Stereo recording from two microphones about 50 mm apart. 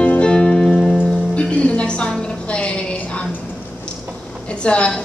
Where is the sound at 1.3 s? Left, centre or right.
Left.